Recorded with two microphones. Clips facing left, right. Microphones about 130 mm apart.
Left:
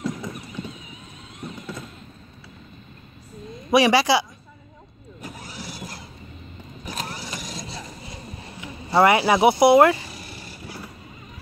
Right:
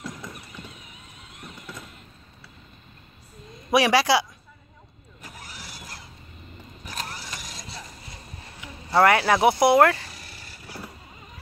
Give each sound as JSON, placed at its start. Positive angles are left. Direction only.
{"t": 1.4, "sound": "music", "side_deg": 20}
{"t": 3.7, "sound": "speech", "side_deg": 0}
{"t": 5.2, "sound": "vehicle", "side_deg": 25}
{"t": 8.5, "sound": "vehicle", "side_deg": 10}